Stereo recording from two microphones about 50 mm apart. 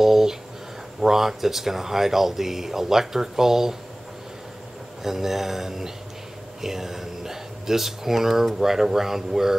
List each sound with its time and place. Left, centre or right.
0.0 s a sound: centre
1.0 s speech: centre
5.0 s speech: centre